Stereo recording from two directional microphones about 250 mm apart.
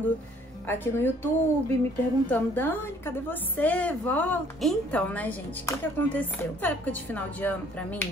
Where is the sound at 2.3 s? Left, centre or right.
Centre.